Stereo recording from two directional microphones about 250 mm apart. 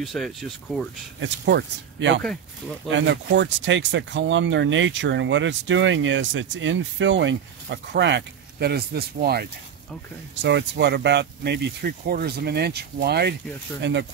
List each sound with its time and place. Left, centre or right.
0.0 s speech: centre
1.2 s speech: right